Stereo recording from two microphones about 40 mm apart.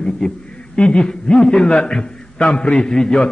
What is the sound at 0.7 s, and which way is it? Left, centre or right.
Speech, left.